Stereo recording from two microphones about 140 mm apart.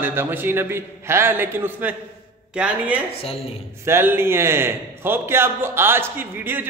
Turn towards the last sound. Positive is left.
turn(degrees=-15)  # may be behind; listen again after turning